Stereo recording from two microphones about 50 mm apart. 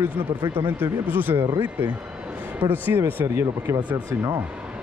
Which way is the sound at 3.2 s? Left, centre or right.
Right.